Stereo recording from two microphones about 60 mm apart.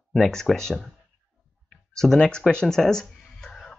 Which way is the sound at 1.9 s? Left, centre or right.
Centre.